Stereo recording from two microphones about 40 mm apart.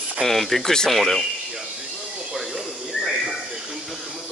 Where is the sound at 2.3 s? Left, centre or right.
Centre.